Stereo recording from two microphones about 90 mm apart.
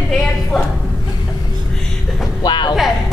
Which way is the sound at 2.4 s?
55° left (ahead or behind).